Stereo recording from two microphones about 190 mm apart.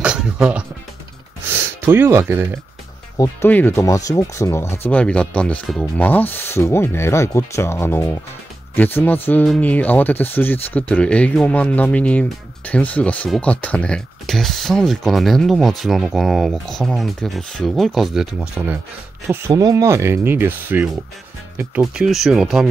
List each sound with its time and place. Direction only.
0.0 s music: 5° right (ahead or behind)
1.9 s speech: 15° right (ahead or behind)
3.2 s speech: 10° left (ahead or behind)
19.2 s speech: 15° right (ahead or behind)